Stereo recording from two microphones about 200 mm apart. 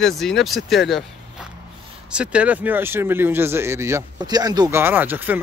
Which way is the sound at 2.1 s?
5° right (ahead or behind).